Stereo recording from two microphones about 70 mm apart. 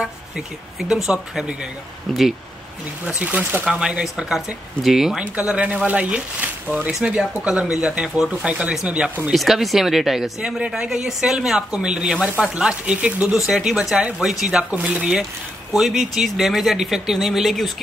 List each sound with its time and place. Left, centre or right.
0.8 s speech: centre
2.1 s speech: centre
3.1 s speech: right
3.6 s speech: centre
5.4 s speech: centre
9.3 s speech: centre
15.7 s speech: centre